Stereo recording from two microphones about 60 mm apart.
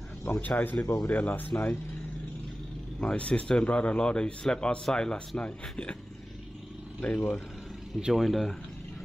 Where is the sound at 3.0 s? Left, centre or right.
Centre.